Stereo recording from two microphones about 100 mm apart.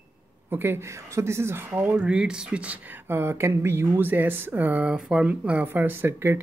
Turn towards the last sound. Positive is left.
turn(degrees=-25)  # may be behind; listen again after turning